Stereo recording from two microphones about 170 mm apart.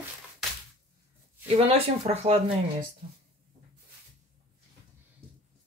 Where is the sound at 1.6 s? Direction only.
35° right (ahead or behind).